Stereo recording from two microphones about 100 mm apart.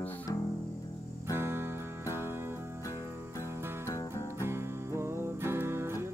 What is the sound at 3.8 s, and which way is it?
Music, 35° left (ahead or behind).